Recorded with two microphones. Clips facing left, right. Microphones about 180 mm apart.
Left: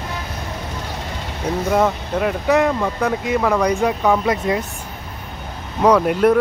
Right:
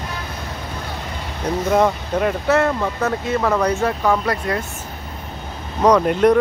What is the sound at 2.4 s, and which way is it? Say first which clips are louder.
Speech: left 4 dB; 15° left (ahead or behind).